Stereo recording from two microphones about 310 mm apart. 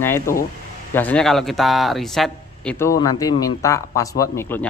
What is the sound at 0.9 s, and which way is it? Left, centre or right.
Speech, centre.